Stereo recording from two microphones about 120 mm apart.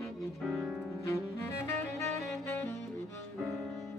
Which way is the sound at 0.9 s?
20° left (ahead or behind).